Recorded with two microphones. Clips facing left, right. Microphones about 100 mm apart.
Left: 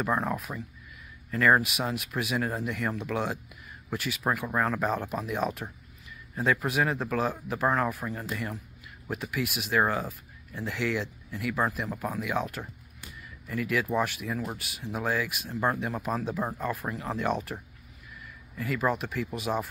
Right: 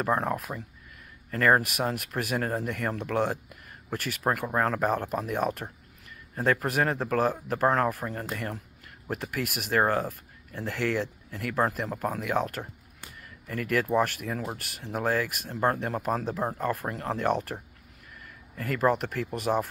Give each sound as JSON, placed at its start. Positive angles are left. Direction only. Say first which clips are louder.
{"t": 0.0, "sound": "speech", "louder": "right 1 dB", "side_deg": -50}